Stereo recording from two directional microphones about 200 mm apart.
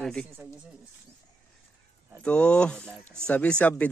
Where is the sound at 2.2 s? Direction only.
5° left (ahead or behind).